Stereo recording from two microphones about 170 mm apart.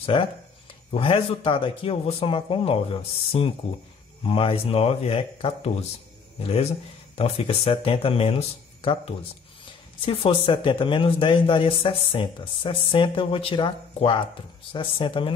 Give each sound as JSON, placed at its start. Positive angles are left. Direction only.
{"t": 0.0, "sound": "speech", "side_deg": 30}